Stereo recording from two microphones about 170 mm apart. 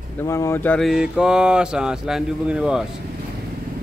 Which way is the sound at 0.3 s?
15° left (ahead or behind).